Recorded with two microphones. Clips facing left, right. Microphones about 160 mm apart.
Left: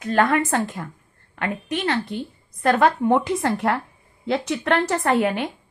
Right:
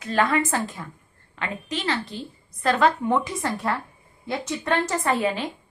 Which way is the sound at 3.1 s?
65° left (ahead or behind).